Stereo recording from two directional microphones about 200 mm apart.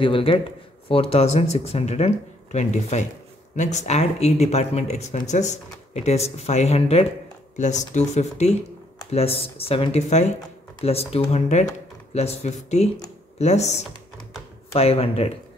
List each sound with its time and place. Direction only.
0.0 s speech: 25° left (ahead or behind)